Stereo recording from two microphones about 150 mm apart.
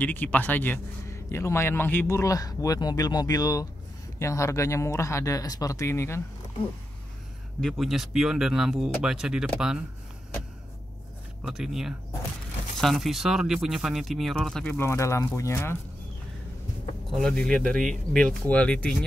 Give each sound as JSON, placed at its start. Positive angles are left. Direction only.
{"t": 0.0, "sound": "a man's voice", "side_deg": 10}
{"t": 7.6, "sound": "speech", "side_deg": 0}
{"t": 11.4, "sound": "speech", "side_deg": -5}
{"t": 17.1, "sound": "speech", "side_deg": 5}